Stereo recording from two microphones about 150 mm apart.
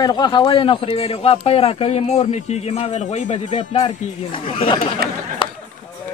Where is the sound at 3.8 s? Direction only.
35° left (ahead or behind).